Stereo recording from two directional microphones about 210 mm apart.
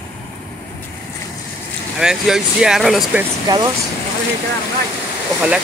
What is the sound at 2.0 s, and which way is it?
Speech, centre (ahead or behind).